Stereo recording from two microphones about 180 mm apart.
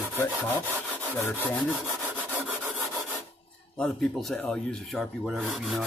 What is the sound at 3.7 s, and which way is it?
Speech, 5° left (ahead or behind).